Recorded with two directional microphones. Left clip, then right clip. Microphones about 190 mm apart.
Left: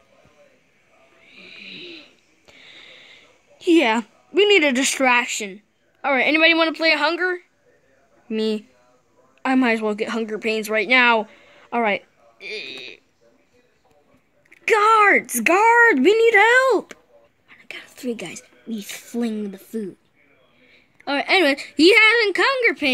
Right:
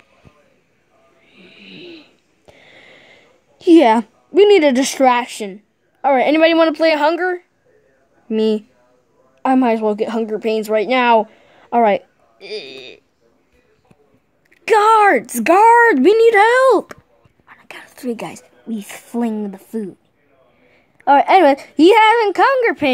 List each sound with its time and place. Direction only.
1.2 s a sound: 10° right (ahead or behind)
8.3 s a woman's voice: 15° right (ahead or behind)
14.5 s a woman's voice: 15° right (ahead or behind)
17.5 s whispering: centre (ahead or behind)
18.8 s a woman's voice: 10° right (ahead or behind)
21.0 s a woman's voice: 10° right (ahead or behind)